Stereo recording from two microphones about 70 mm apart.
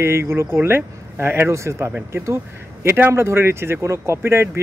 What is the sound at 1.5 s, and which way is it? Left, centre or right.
Speech, right.